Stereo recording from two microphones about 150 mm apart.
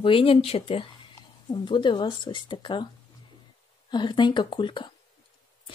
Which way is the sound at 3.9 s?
30° left (ahead or behind).